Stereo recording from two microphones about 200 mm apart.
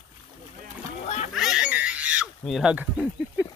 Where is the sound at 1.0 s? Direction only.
35° left (ahead or behind).